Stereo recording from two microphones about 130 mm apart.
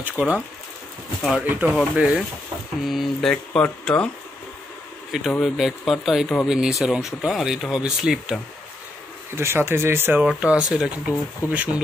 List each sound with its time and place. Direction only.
0.1 s speech: 10° right (ahead or behind); by 4.1 s 10° left (ahead or behind)
5.3 s speech: centre (ahead or behind)
9.3 s speech: 20° right (ahead or behind)
10.2 s speech: 5° right (ahead or behind)